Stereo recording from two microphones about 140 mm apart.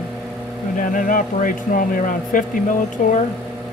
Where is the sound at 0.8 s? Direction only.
75° left (ahead or behind).